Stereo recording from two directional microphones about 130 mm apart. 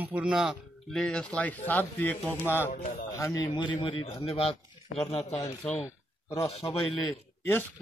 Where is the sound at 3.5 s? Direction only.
35° left (ahead or behind).